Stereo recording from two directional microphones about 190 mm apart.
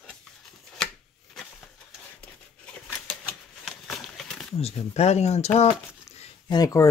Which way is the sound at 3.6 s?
Centre (ahead or behind).